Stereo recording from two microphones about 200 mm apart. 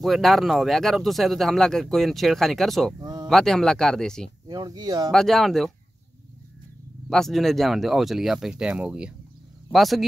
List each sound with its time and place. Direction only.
0.0 s speech: centre (ahead or behind)
3.0 s a sound: 20° right (ahead or behind)
3.3 s speech: centre (ahead or behind)
4.5 s speech: 20° right (ahead or behind)
5.1 s speech: centre (ahead or behind)
7.1 s speech: centre (ahead or behind)